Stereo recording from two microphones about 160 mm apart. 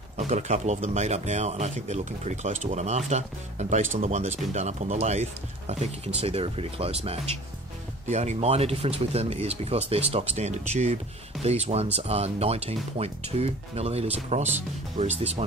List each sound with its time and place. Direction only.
0.2 s speech: 45° right (ahead or behind)